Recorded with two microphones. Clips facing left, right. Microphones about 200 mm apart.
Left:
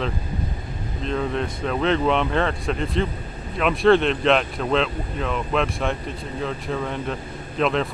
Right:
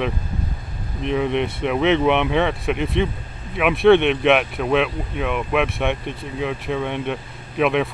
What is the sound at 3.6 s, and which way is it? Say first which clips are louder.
Speech: right 3 dB; 5° right (ahead or behind).